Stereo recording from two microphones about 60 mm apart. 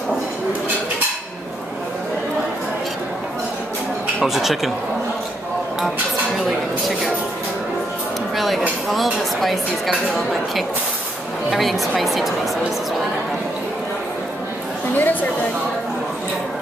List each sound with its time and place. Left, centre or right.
4.2 s speech: centre
8.4 s speech: centre
11.5 s speech: centre
15.0 s speech: left